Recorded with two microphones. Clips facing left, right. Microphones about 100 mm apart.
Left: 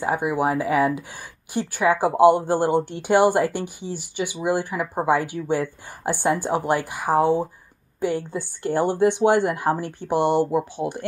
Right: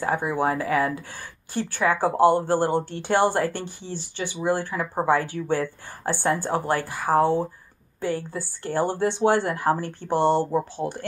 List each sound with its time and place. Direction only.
0.0 s a woman's voice: 15° left (ahead or behind)